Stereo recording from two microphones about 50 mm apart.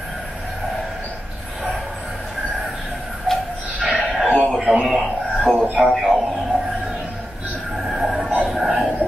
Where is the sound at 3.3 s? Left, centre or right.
Centre.